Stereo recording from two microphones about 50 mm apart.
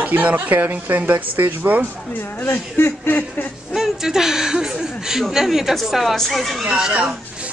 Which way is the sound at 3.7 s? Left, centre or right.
Centre.